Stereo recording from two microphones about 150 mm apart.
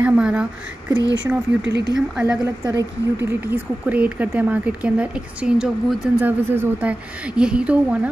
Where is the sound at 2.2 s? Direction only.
20° right (ahead or behind).